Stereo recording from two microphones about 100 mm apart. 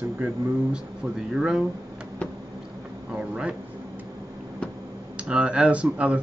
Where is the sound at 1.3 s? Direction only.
5° right (ahead or behind).